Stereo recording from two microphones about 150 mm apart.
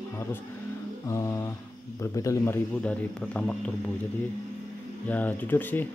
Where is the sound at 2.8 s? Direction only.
10° left (ahead or behind).